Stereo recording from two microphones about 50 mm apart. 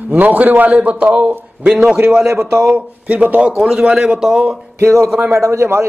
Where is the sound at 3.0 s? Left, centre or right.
Right.